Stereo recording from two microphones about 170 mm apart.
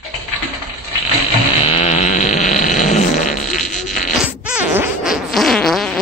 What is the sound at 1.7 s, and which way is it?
Fart, 35° left (ahead or behind).